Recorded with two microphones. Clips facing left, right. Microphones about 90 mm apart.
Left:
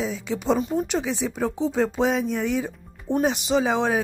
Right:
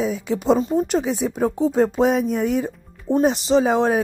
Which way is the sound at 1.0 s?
5° right (ahead or behind).